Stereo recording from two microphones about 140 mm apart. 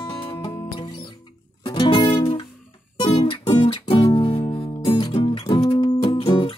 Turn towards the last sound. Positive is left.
turn(degrees=35)  # may be behind; listen again after turning